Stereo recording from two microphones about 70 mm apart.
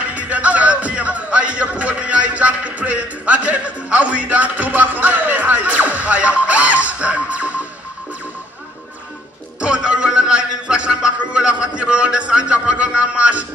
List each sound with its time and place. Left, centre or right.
0.1 s speech: right
9.6 s a man's voice: centre